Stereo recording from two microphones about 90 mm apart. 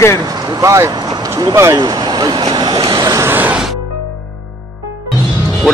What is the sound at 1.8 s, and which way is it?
Speech, 55° right (ahead or behind).